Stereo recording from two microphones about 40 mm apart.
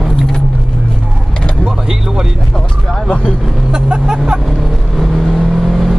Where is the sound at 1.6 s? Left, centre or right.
Centre.